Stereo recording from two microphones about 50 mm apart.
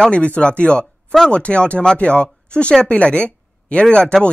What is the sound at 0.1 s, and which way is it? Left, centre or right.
Speech, left.